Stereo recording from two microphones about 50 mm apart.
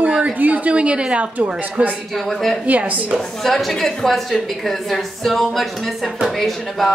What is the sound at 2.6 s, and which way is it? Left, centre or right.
Speech, right.